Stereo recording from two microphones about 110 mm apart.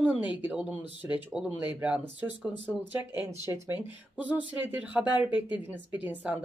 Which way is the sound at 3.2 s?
25° right (ahead or behind).